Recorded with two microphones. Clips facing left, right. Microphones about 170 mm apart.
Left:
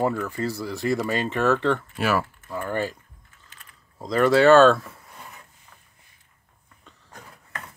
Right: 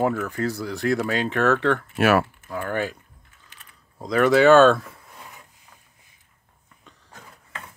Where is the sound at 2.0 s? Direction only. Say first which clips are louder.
Right 5 dB; 65° right (ahead or behind).